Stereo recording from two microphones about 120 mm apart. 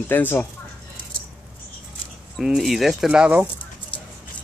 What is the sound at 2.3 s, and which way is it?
Speech, centre (ahead or behind).